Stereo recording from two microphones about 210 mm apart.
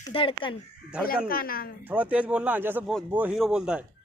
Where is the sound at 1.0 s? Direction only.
45° left (ahead or behind).